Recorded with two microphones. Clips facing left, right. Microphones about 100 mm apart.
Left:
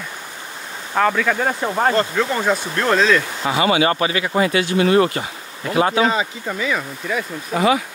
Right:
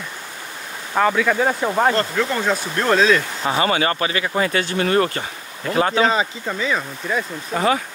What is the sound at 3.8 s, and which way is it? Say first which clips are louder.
Speech: left 3 dB; 25° left (ahead or behind).